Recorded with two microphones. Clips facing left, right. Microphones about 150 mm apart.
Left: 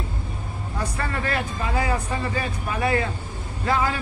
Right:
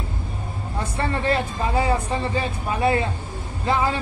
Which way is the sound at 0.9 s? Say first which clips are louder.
Right 6 dB; 25° right (ahead or behind).